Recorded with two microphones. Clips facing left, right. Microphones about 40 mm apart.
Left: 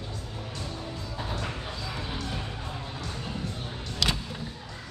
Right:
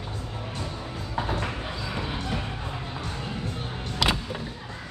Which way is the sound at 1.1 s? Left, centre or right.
Right.